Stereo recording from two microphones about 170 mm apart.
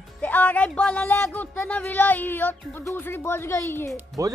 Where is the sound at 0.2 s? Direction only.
10° left (ahead or behind).